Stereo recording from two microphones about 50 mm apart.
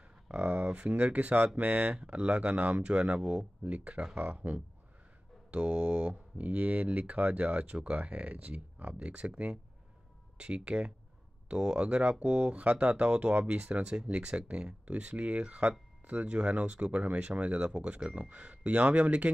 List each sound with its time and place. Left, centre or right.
0.3 s speech: right
10.3 s speech: right